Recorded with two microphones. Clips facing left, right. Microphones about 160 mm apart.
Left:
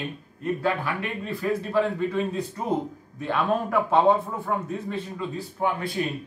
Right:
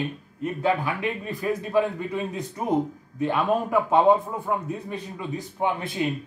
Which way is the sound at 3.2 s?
15° right (ahead or behind).